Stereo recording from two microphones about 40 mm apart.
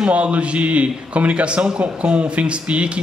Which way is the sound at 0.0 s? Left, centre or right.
Right.